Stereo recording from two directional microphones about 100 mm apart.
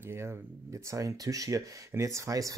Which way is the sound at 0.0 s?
25° right (ahead or behind).